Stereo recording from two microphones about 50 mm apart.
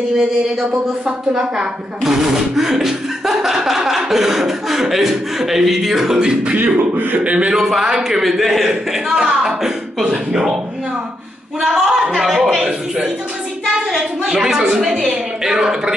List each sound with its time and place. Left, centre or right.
0.6 s a woman's voice: centre
6.5 s speech: right
7.3 s a woman's voice: centre
8.2 s a man's voice: centre
9.1 s a sound: centre
10.0 s a woman's voice: centre
11.6 s a woman's voice: centre
13.7 s a woman's voice: centre